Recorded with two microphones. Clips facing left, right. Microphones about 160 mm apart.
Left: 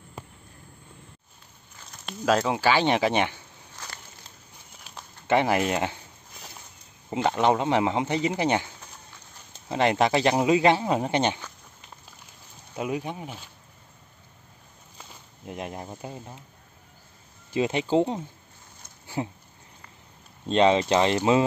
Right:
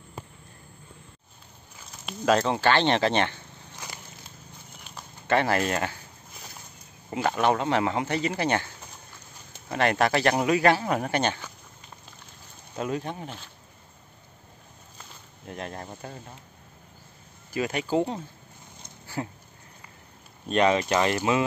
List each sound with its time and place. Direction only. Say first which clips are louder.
2.0 s speech: right 1 dB; centre (ahead or behind)
3.7 s crackle: right 1 dB; 15° right (ahead or behind)
5.3 s speech: left 1 dB; 15° left (ahead or behind)
7.2 s speech: left 1 dB; 20° left (ahead or behind)
12.7 s speech: even; 10° left (ahead or behind)
15.4 s speech: left 1 dB; 15° left (ahead or behind)
17.5 s speech: left 3 dB; 25° left (ahead or behind)
20.4 s speech: left 2 dB; 25° left (ahead or behind)